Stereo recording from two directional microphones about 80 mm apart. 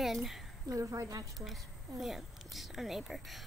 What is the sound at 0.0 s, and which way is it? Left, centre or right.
Speech, centre.